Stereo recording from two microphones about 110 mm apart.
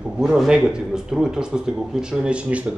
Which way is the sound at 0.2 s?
5° right (ahead or behind).